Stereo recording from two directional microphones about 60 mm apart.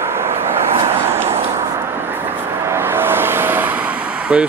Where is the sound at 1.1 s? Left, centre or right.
Right.